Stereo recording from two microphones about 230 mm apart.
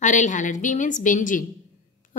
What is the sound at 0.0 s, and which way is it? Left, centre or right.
A woman's voice, left.